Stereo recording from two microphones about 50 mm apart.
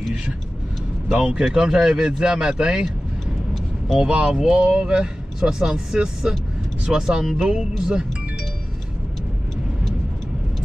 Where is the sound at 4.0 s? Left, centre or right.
Centre.